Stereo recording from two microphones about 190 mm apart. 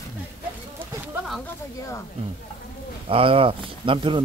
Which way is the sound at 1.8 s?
15° left (ahead or behind).